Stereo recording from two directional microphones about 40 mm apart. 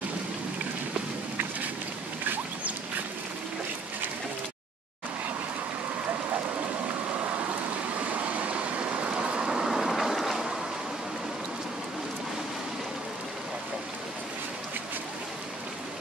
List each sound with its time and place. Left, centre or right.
6.9 s a sound: right
8.0 s vehicle: right; by 9.7 s centre
9.7 s boat: centre